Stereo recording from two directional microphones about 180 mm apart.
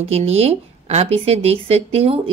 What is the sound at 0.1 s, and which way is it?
A woman's voice, 35° right (ahead or behind).